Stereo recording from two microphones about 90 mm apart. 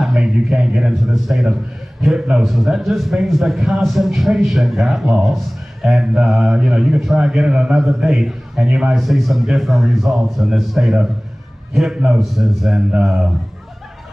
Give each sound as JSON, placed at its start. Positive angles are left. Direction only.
{"t": 0.0, "sound": "a man's voice", "side_deg": -5}